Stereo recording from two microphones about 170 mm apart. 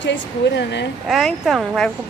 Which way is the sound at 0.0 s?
90° left.